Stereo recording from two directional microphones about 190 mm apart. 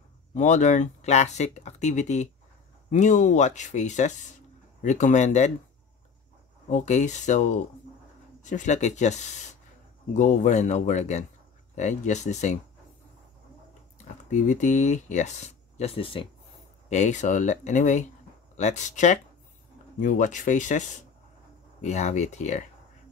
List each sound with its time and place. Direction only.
0.3 s speech: 40° left (ahead or behind)
6.7 s speech: 40° left (ahead or behind)
14.3 s speech: 40° left (ahead or behind)